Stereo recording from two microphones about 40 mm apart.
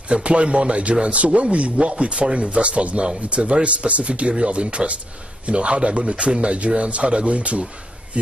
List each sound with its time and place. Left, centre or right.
0.1 s a man's voice: right